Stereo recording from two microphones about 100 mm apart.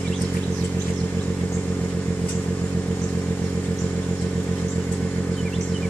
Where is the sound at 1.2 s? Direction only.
15° left (ahead or behind).